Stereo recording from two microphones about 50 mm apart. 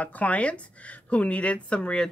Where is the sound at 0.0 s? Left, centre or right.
Left.